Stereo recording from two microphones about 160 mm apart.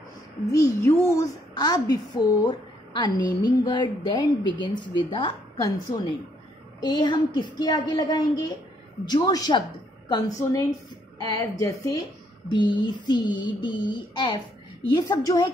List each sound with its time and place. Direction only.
0.5 s a woman's voice: 20° left (ahead or behind)
6.8 s a woman's voice: 25° left (ahead or behind)
12.4 s a woman's voice: 30° left (ahead or behind)